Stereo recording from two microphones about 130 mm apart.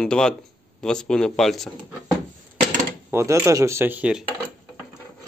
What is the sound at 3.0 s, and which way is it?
Speech, 20° right (ahead or behind).